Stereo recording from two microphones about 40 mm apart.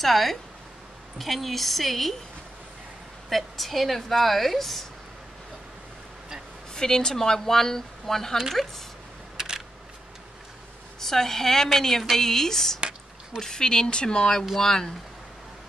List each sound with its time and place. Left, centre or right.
0.0 s speech: centre
3.3 s speech: centre
6.7 s a woman's voice: centre
9.4 s a sound: centre
11.0 s a woman's voice: centre